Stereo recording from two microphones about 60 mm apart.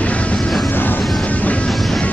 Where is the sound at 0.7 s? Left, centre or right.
Left.